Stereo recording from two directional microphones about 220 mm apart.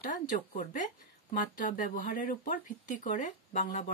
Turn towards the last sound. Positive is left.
turn(degrees=35)  # may be behind; listen again after turning